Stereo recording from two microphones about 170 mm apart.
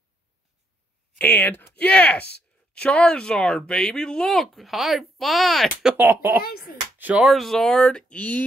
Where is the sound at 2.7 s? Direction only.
5° left (ahead or behind); by 6.4 s 15° right (ahead or behind).